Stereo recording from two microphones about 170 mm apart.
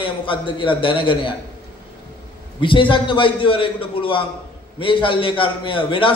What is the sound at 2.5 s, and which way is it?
A man's voice, 30° left (ahead or behind).